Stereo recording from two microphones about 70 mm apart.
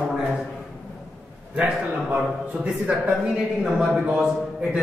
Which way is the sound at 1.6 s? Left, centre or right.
Centre.